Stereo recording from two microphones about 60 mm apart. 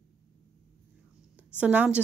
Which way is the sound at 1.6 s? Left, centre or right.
Right.